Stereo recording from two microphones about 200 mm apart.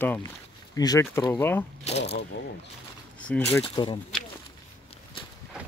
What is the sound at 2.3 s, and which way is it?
Speech, 60° left (ahead or behind).